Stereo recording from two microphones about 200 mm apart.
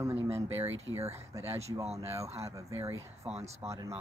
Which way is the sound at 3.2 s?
30° right (ahead or behind).